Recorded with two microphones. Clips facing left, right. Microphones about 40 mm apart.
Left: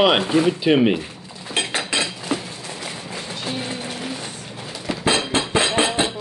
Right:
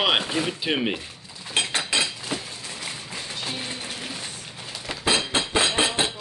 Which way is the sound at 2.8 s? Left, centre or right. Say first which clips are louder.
Left 3 dB; centre.